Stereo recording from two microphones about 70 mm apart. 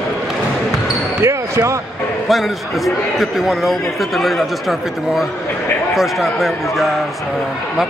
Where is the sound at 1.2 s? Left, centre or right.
Right.